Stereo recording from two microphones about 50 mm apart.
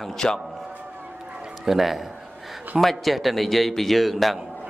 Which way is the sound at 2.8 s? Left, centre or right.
Centre.